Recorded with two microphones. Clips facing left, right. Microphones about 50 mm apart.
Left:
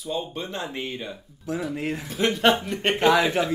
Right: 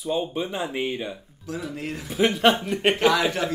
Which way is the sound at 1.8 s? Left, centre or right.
Left.